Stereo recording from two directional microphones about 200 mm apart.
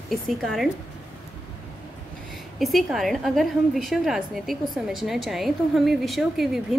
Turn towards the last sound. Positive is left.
turn(degrees=0)  # may be behind; listen again after turning